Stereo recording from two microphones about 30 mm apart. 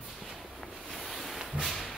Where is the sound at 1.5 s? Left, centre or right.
Centre.